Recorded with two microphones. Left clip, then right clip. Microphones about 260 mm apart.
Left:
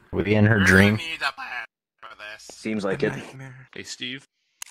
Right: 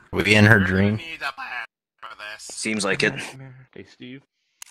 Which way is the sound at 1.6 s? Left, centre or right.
Centre.